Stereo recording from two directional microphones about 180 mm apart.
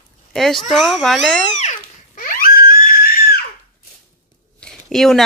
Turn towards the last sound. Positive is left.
turn(degrees=0)  # may be behind; listen again after turning